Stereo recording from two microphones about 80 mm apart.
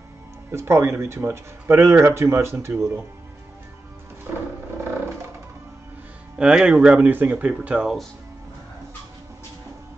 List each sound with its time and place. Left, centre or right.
0.5 s speech: right
6.3 s speech: centre